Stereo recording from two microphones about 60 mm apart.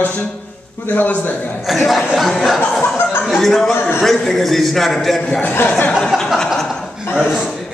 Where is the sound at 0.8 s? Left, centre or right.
Left.